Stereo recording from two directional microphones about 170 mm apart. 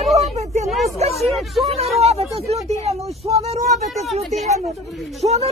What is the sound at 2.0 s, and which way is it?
Speech, 35° right (ahead or behind).